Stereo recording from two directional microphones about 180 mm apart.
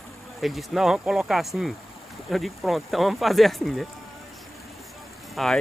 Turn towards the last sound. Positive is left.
turn(degrees=0)  # may be behind; listen again after turning